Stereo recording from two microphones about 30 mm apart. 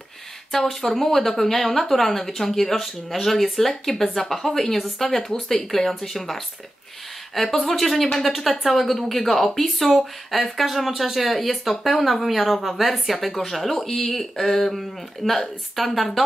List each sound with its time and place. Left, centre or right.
0.5 s a woman's voice: centre